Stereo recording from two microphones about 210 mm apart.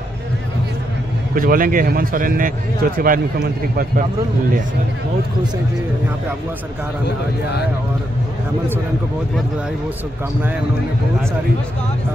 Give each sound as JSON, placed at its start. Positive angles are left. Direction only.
{"t": 1.3, "sound": "speech", "side_deg": -40}